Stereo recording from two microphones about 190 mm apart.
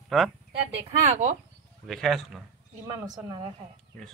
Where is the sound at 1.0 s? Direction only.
35° right (ahead or behind).